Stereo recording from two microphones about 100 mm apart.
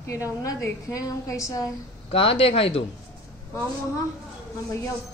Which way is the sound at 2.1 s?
70° left (ahead or behind).